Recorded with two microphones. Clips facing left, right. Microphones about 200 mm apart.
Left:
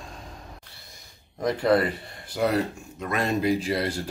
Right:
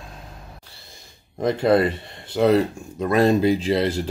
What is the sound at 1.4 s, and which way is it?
Speech, 25° right (ahead or behind).